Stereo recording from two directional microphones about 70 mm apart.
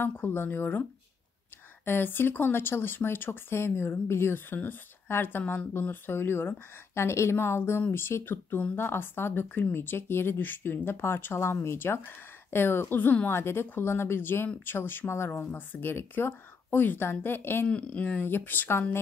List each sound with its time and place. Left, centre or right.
0.0 s speech: left
1.9 s speech: left
17.6 s speech: centre